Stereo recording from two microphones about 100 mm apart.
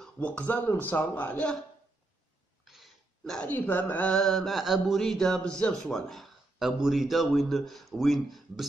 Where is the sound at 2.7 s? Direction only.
Centre (ahead or behind).